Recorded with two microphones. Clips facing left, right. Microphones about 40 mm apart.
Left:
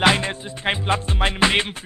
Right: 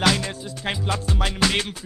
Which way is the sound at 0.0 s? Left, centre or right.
Left.